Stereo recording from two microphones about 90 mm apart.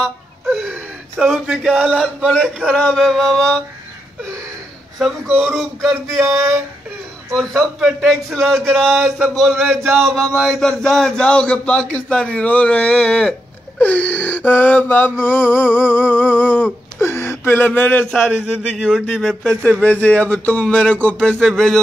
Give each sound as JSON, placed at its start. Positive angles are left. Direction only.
{"t": 0.0, "sound": "wail", "side_deg": 0}
{"t": 1.3, "sound": "a man's voice", "side_deg": 0}
{"t": 4.9, "sound": "a man's voice", "side_deg": 0}
{"t": 13.7, "sound": "a sound", "side_deg": 20}
{"t": 17.0, "sound": "speech", "side_deg": 30}
{"t": 19.0, "sound": "a man's voice", "side_deg": 5}
{"t": 19.6, "sound": "speech", "side_deg": 15}